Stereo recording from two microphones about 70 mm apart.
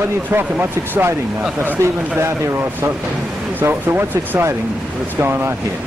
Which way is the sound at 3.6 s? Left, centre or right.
Right.